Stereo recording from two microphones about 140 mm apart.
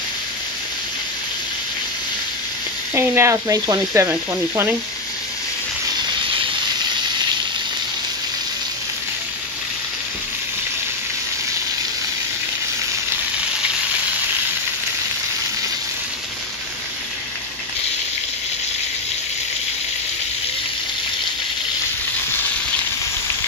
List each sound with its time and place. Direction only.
2.9 s sizzle: 20° right (ahead or behind)